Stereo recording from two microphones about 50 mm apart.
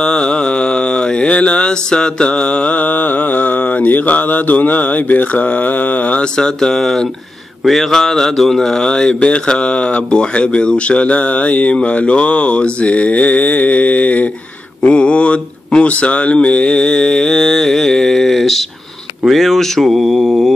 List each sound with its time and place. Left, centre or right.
0.0 s mantra: centre
7.6 s speech: centre